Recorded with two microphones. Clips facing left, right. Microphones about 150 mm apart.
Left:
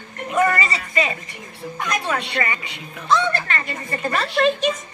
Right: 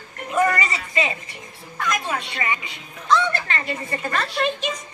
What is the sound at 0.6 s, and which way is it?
Speech, 20° right (ahead or behind).